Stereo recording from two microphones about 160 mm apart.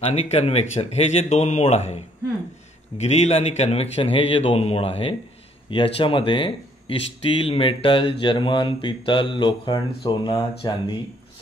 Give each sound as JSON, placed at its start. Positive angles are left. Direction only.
{"t": 0.0, "sound": "speech", "side_deg": 40}